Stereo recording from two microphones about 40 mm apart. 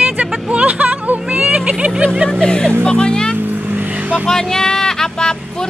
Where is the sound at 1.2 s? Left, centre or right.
Right.